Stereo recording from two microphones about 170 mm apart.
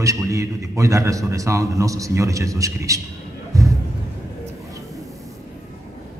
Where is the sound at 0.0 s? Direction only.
20° right (ahead or behind).